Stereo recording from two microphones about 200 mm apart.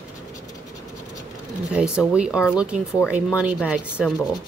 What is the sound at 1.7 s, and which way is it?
A woman's voice, 5° right (ahead or behind).